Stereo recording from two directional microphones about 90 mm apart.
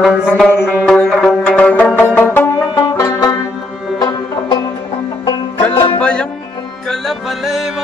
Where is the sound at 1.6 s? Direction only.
15° left (ahead or behind).